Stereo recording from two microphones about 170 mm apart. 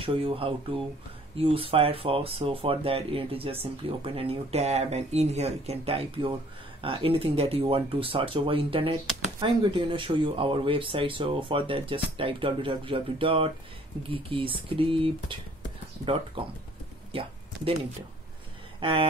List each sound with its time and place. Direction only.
0.0 s speech: 35° right (ahead or behind)
17.1 s a sound: 35° right (ahead or behind)
18.8 s speech: 35° right (ahead or behind)